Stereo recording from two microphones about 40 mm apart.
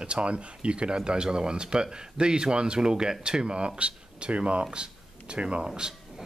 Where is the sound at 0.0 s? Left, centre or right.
Right.